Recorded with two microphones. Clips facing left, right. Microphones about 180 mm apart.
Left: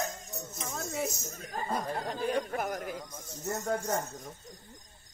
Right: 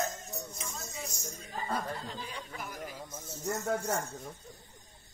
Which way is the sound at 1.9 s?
60° left (ahead or behind).